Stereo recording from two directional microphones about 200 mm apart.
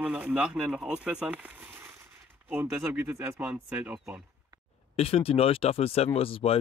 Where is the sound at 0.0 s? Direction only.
5° right (ahead or behind).